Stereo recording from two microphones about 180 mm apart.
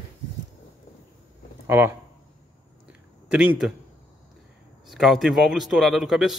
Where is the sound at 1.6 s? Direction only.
10° right (ahead or behind).